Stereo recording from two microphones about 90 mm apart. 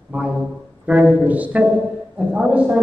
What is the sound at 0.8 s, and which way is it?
A woman's voice, 10° right (ahead or behind).